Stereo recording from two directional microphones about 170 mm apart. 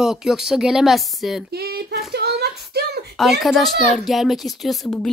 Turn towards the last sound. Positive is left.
turn(degrees=0)  # may be behind; listen again after turning